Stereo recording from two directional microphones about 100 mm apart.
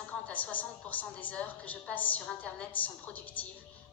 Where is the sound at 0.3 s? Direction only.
15° left (ahead or behind).